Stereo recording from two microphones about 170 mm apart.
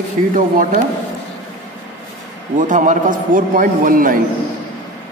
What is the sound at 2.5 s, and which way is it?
A man's voice, 50° right (ahead or behind).